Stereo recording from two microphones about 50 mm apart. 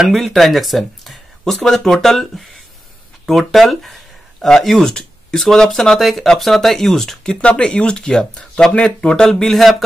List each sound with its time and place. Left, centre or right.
0.1 s speech: centre
7.3 s speech: left; by 9.8 s centre